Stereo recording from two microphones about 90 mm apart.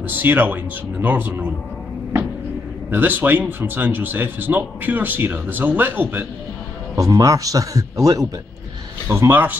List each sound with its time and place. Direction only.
0.0 s a man's voice: 20° right (ahead or behind)
2.9 s a man's voice: 20° right (ahead or behind)
7.0 s speech: 40° right (ahead or behind)
9.1 s a man's voice: 25° right (ahead or behind)